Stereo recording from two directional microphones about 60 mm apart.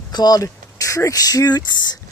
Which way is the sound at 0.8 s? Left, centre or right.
Left.